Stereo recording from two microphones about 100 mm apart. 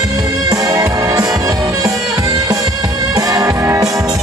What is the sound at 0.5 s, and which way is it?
Music, 35° right (ahead or behind).